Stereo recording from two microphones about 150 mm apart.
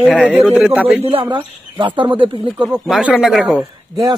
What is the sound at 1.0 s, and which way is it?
Speech, 35° right (ahead or behind).